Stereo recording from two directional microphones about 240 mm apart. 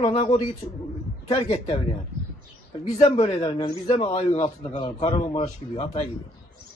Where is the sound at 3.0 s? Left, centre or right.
Left.